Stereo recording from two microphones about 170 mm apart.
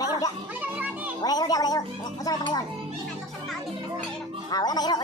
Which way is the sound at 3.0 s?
Centre (ahead or behind).